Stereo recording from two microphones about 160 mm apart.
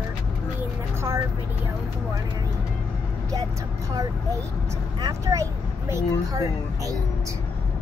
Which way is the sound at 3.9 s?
20° right (ahead or behind).